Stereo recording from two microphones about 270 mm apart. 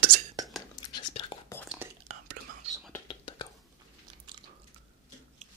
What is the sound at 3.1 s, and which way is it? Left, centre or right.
Whispering, centre.